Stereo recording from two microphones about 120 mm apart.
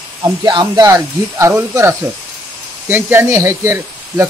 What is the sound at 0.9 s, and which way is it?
Speech, 20° right (ahead or behind).